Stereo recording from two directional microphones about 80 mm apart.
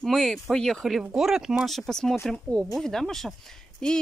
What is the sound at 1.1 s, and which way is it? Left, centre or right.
Speech, centre.